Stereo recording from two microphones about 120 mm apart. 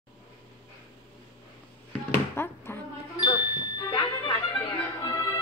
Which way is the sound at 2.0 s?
20° left (ahead or behind).